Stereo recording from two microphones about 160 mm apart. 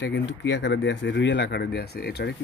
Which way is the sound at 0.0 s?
90° left.